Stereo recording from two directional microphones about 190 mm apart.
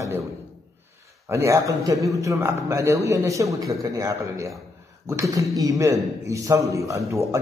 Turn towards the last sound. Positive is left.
turn(degrees=-15)  # may be behind; listen again after turning